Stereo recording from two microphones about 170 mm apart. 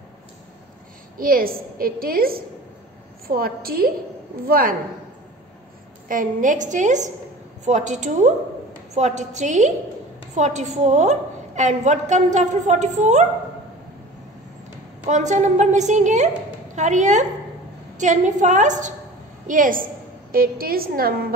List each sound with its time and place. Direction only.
1.1 s a woman's voice: 60° right (ahead or behind)
6.0 s a woman's voice: 50° right (ahead or behind)
15.0 s a woman's voice: 45° right (ahead or behind); by 21.3 s 60° right (ahead or behind)